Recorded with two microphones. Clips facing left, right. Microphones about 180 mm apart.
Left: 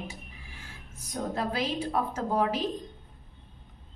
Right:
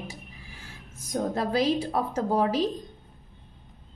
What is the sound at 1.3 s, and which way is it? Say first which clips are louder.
A woman's voice: right 6 dB; 35° right (ahead or behind).